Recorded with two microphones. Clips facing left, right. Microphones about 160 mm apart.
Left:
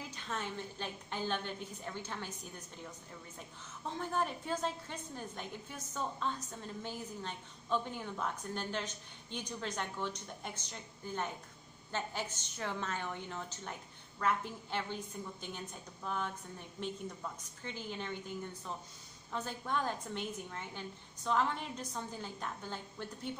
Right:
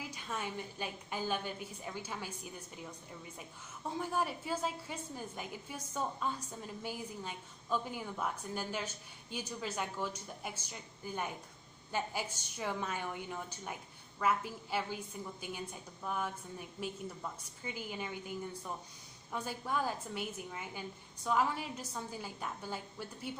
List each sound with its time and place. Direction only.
0.0 s a woman's voice: 10° right (ahead or behind)
3.9 s a woman's voice: 10° right (ahead or behind)